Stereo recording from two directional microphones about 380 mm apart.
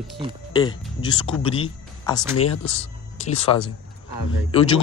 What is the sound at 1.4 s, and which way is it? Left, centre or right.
Speech, centre.